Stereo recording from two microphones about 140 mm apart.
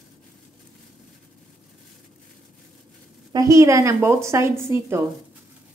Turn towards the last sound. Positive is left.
turn(degrees=-20)  # may be behind; listen again after turning